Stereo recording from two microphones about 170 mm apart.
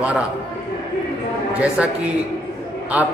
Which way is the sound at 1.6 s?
10° right (ahead or behind).